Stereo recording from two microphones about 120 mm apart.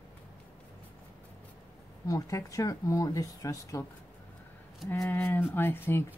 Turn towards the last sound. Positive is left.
turn(degrees=15)  # may be behind; listen again after turning